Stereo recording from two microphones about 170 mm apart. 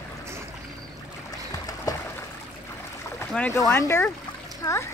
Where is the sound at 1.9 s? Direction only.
20° left (ahead or behind).